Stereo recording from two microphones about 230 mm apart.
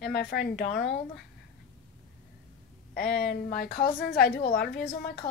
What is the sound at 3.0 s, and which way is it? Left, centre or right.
A woman's voice, left.